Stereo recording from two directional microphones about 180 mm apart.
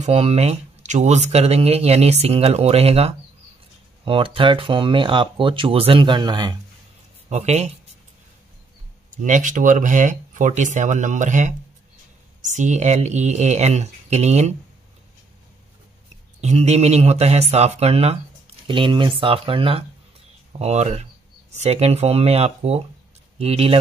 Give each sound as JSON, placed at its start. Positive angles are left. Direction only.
{"t": 0.0, "sound": "speech", "side_deg": -35}
{"t": 7.2, "sound": "speech", "side_deg": -35}
{"t": 9.2, "sound": "speech", "side_deg": -45}
{"t": 16.3, "sound": "speech", "side_deg": -40}